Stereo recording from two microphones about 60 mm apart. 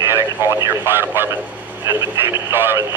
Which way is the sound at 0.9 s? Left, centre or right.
Right.